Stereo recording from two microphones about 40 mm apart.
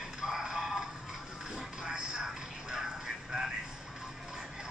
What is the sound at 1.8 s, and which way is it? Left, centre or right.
Television, right.